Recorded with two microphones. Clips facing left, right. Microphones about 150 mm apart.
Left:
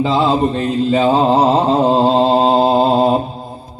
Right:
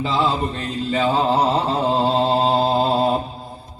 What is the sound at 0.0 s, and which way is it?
Mantra, 35° left (ahead or behind).